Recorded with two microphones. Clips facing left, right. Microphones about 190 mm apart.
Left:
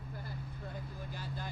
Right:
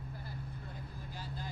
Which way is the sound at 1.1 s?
60° left (ahead or behind).